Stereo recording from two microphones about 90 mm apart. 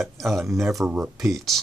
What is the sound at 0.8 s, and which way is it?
Speech, 20° right (ahead or behind).